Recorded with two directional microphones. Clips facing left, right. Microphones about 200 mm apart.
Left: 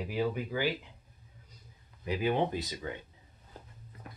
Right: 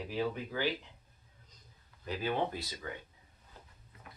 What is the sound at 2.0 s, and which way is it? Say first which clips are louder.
Speech: left 4 dB; 15° left (ahead or behind).